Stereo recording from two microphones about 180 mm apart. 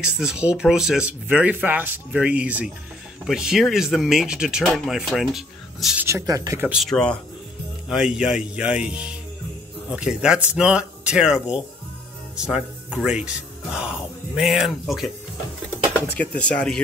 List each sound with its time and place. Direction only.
0.2 s speech: 5° right (ahead or behind)
6.0 s speech: 15° right (ahead or behind)
6.7 s speech: centre (ahead or behind)
16.2 s speech: 5° left (ahead or behind)